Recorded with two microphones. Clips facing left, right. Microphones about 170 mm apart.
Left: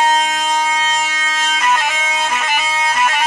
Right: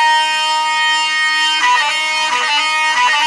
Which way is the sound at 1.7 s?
75° right (ahead or behind).